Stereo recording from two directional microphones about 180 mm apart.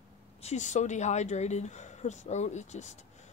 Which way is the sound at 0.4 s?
40° left (ahead or behind).